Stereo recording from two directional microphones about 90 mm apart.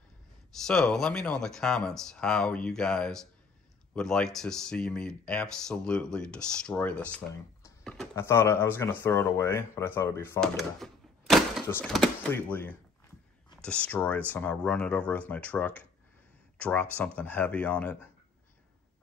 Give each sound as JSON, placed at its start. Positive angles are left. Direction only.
{"t": 0.5, "sound": "speech", "side_deg": 5}
{"t": 7.8, "sound": "a sound", "side_deg": 5}
{"t": 8.1, "sound": "speech", "side_deg": 25}
{"t": 10.6, "sound": "a sound", "side_deg": 0}
{"t": 11.8, "sound": "speech", "side_deg": 5}
{"t": 12.3, "sound": "speech", "side_deg": 20}